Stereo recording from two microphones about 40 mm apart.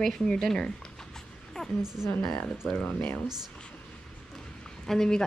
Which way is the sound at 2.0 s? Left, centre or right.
Centre.